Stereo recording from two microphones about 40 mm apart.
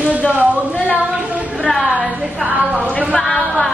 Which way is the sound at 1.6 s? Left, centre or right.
Centre.